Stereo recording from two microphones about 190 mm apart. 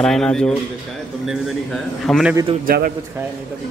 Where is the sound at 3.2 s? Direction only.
10° right (ahead or behind).